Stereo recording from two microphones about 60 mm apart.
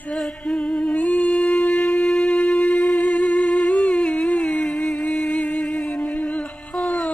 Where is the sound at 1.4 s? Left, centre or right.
Left.